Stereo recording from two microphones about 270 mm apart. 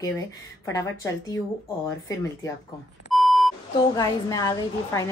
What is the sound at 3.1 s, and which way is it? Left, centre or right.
Beep, centre.